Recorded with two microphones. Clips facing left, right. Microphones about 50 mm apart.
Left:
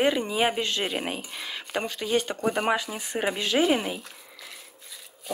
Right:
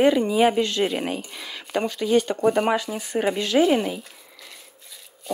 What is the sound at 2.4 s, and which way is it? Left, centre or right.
Speech, centre.